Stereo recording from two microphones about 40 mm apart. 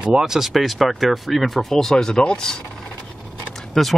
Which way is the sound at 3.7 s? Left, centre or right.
Centre.